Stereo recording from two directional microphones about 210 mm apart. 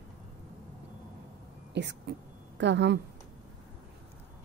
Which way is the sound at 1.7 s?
55° right (ahead or behind).